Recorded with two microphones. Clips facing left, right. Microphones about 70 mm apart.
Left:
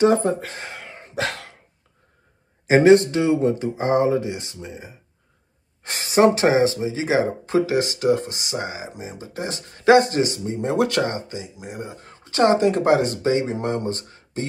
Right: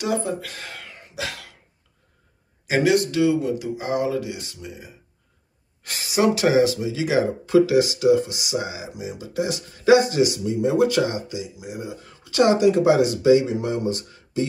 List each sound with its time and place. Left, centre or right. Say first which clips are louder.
0.0 s speech: left 7 dB; left
2.6 s speech: left 6 dB; left